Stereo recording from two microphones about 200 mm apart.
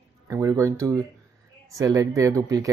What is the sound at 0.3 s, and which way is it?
Speech, 15° right (ahead or behind).